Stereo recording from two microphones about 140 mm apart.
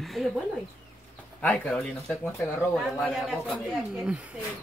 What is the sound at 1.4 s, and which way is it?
Speech, 10° left (ahead or behind).